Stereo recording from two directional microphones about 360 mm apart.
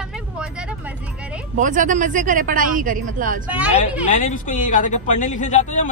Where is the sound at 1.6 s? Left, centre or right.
Right.